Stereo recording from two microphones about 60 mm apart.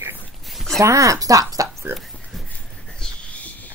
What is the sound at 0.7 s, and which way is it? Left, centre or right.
Speech, right.